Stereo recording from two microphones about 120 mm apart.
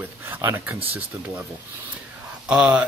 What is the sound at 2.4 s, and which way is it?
Speech, 10° right (ahead or behind).